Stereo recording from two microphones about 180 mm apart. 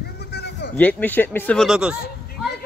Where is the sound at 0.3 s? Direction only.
65° left (ahead or behind).